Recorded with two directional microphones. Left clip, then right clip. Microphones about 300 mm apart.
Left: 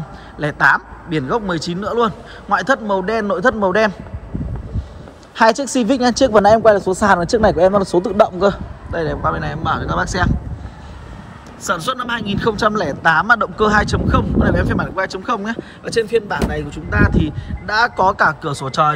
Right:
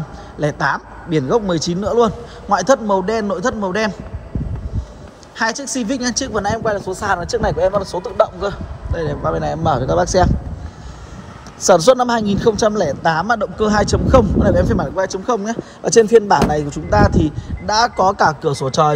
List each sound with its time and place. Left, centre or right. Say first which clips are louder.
0.4 s a man's voice: left 4 dB; centre
0.7 s a man's voice: right 1 dB; centre
1.5 s a man's voice: right 3 dB; centre
5.4 s speech: left 6 dB; centre
8.9 s a man's voice: left 1 dB; centre
9.9 s speech: right 4 dB; centre
11.6 s a man's voice: right 9 dB; centre
15.8 s a man's voice: right 7 dB; right